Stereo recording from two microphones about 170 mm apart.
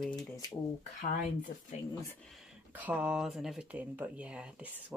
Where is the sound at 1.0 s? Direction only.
50° left (ahead or behind).